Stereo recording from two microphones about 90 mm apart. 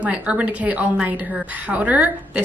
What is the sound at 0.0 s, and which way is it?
A woman's voice, 15° right (ahead or behind).